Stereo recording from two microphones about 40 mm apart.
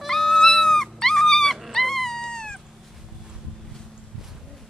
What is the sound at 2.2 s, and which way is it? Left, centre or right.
Cat, centre.